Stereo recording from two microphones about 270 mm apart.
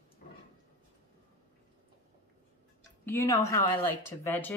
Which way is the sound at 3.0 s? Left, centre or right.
Centre.